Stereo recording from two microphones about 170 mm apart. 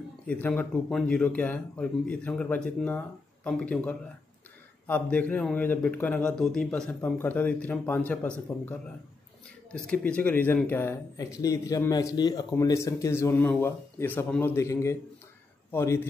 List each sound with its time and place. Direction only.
0.3 s speech: 10° left (ahead or behind)